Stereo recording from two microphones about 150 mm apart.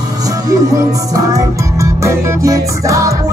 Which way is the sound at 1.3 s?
20° right (ahead or behind).